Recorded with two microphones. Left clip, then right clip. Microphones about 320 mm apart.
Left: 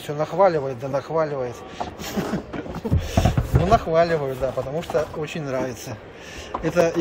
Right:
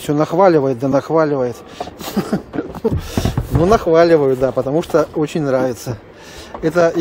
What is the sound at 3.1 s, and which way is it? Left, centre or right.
Speech, right.